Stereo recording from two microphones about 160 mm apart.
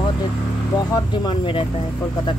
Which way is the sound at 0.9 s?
30° left (ahead or behind).